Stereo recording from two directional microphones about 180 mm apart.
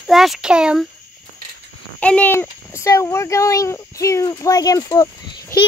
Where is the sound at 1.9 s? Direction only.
10° left (ahead or behind).